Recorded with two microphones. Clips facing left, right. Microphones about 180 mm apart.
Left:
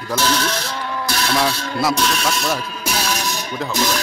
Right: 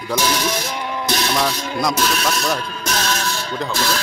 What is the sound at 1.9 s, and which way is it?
Speech, centre (ahead or behind).